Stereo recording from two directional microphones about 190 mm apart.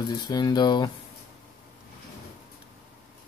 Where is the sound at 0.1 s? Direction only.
20° left (ahead or behind).